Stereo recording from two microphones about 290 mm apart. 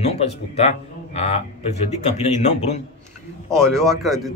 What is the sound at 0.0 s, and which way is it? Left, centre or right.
Speech, left.